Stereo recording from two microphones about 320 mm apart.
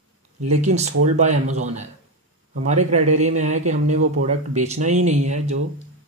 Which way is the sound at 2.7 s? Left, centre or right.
Right.